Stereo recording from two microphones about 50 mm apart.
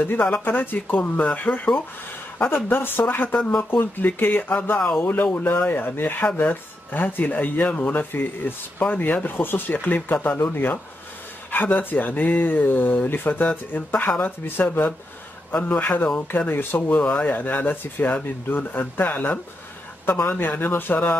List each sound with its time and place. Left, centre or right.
0.0 s speech: left
2.3 s speech: left